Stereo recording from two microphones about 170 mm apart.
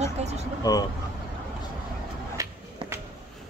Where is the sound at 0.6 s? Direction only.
20° left (ahead or behind).